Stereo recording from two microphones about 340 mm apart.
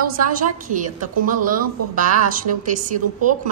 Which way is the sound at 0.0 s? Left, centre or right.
Right.